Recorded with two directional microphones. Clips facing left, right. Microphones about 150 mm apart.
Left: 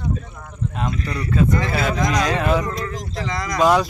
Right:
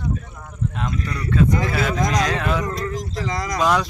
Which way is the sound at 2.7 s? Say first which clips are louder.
Right 1 dB; 40° right (ahead or behind).